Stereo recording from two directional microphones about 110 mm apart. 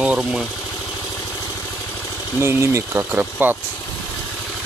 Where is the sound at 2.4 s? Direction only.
25° right (ahead or behind).